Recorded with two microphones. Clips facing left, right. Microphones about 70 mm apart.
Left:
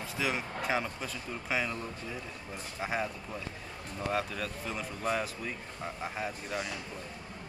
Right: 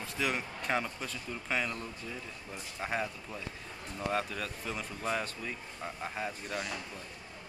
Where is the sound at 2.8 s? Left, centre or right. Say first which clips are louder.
Left 1 dB; centre.